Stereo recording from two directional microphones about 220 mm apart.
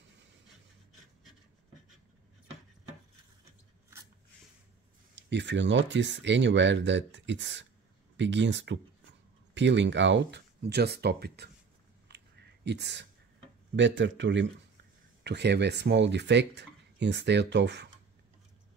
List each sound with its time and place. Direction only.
5.1 s speech: 55° right (ahead or behind)
12.1 s a sound: 50° right (ahead or behind)
12.6 s speech: 50° right (ahead or behind)